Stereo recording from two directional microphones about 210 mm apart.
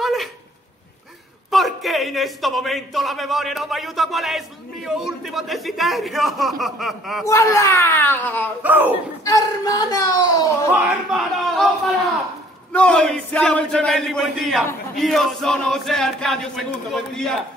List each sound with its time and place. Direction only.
0.0 s dog: centre (ahead or behind)
1.5 s a man's voice: centre (ahead or behind)
7.2 s speech: 15° left (ahead or behind)
8.6 s speech: 10° right (ahead or behind)
9.2 s speech: 15° left (ahead or behind)
10.7 s a man's voice: 5° right (ahead or behind)
12.7 s a man's voice: 5° left (ahead or behind)